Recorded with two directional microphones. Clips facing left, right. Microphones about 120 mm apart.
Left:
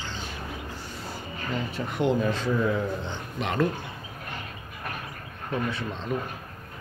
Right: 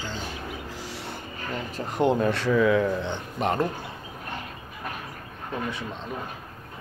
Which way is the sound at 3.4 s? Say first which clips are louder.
Right 5 dB; 45° right (ahead or behind).